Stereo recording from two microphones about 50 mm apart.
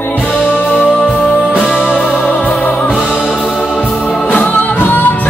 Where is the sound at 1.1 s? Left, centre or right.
Centre.